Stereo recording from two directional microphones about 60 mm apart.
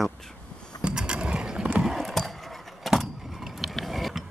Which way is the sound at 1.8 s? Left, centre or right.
Centre.